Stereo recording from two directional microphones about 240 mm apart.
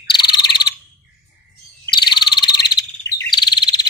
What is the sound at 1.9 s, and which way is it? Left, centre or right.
Frog, centre.